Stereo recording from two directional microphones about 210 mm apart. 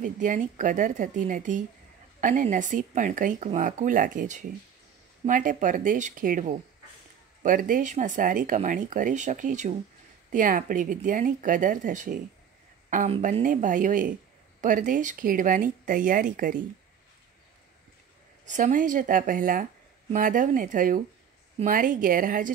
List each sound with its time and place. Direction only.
0.0 s speech: 40° right (ahead or behind)
18.4 s speech: 35° right (ahead or behind)